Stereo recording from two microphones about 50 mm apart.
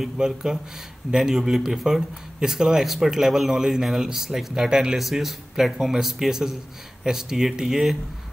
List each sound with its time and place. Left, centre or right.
0.0 s speech: centre
4.9 s speech: centre